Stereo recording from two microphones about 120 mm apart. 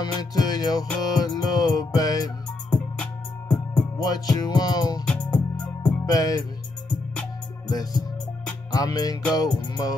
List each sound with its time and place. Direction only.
0.0 s music: 35° left (ahead or behind)
2.7 s music: 10° left (ahead or behind)
4.0 s music: 35° left (ahead or behind)
5.0 s music: 10° left (ahead or behind)
6.0 s music: 30° left (ahead or behind)
7.6 s music: 35° left (ahead or behind)